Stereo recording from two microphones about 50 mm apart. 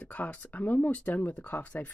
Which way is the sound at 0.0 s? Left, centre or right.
Left.